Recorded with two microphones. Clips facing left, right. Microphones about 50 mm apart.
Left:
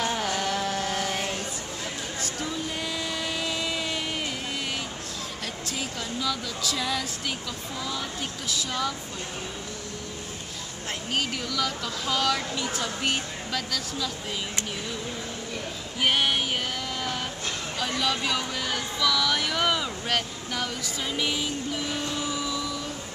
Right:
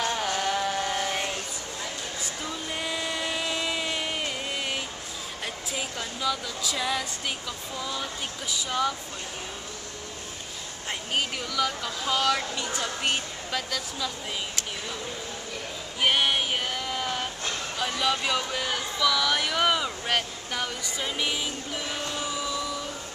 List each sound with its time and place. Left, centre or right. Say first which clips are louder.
0.0 s mantra: even; centre
2.8 s a sound: right 1 dB; centre
5.7 s speech: left 1 dB; centre
8.5 s speech: right 2 dB; centre
11.1 s speech: right 1 dB; centre
16.0 s female singing: even; centre
17.7 s speech: right 1 dB; centre